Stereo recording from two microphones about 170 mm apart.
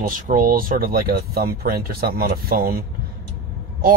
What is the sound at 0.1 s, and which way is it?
Speech, 55° right (ahead or behind).